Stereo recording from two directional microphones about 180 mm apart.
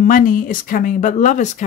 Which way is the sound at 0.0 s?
50° left (ahead or behind).